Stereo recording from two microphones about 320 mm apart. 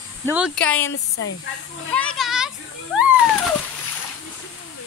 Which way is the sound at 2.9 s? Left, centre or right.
Centre.